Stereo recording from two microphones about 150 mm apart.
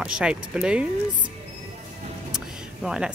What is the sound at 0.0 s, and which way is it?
Speech, 5° right (ahead or behind).